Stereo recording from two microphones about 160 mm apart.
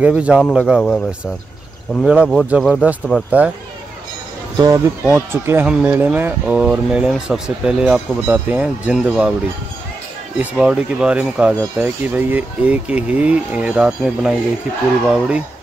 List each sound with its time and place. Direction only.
0.0 s speech: 10° right (ahead or behind)
4.6 s speech: 20° right (ahead or behind)
10.3 s speech: 10° right (ahead or behind)